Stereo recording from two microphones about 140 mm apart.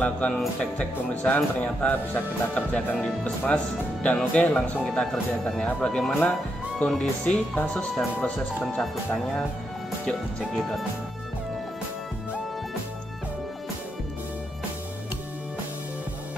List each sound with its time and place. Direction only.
0.0 s speech: 5° left (ahead or behind)